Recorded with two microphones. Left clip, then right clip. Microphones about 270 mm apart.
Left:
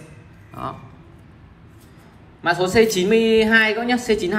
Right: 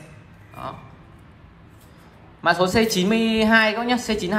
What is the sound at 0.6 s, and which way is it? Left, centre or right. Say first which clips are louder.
Speech: left 3 dB; centre.